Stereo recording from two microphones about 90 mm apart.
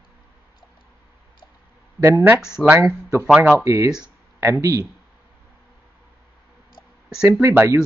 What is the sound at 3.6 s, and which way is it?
Speech, 35° right (ahead or behind).